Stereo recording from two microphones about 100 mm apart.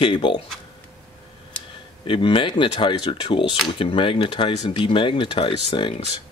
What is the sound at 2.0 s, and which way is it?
Speech, 60° left (ahead or behind).